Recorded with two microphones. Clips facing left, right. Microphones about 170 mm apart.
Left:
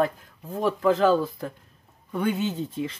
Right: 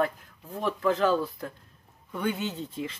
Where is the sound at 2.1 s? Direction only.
15° left (ahead or behind).